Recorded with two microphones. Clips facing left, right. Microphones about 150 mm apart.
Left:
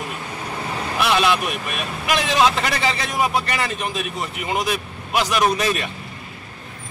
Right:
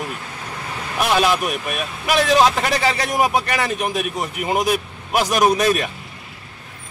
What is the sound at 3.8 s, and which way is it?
A man's voice, 50° right (ahead or behind).